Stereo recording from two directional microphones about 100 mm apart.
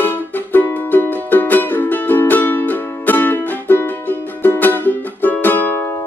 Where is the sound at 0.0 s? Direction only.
20° left (ahead or behind).